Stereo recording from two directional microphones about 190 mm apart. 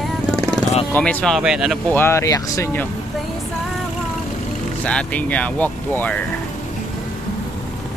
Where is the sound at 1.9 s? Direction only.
15° left (ahead or behind).